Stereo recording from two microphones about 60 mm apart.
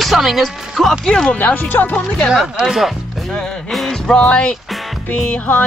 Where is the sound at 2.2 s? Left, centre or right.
Centre.